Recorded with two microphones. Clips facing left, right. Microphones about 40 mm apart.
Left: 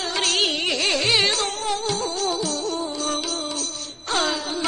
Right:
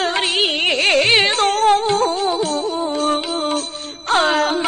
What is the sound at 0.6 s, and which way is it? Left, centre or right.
Music, right.